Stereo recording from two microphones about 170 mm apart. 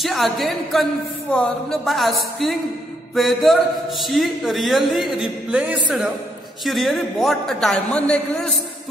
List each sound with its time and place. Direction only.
0.0 s speech: centre (ahead or behind)